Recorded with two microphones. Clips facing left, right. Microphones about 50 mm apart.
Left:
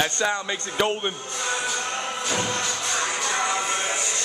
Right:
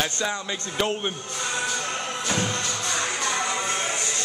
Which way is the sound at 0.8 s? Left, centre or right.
Centre.